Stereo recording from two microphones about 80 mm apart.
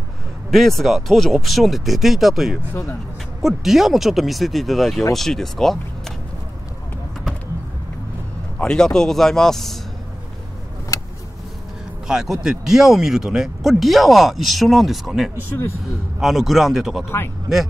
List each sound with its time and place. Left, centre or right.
0.5 s speech: centre
8.5 s speech: centre
10.9 s vehicle: left
12.1 s speech: centre